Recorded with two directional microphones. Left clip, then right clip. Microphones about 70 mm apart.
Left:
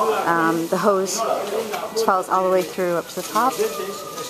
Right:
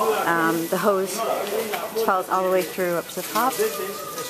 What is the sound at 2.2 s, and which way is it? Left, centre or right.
Speech, centre.